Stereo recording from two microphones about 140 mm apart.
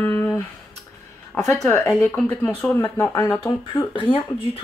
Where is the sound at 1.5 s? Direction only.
20° left (ahead or behind).